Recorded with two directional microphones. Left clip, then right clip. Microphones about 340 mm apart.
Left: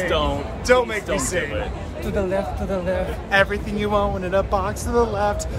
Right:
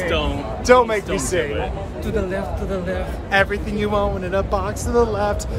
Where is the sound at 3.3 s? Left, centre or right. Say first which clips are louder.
Right 1 dB; centre.